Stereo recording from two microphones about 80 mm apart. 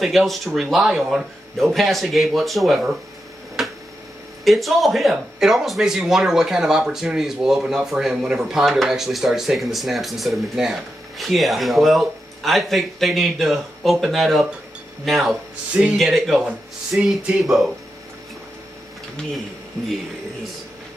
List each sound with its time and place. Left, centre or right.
0.0 s speech: centre
3.6 s a sound: centre
4.5 s speech: centre
15.7 s speech: centre
16.0 s speech: centre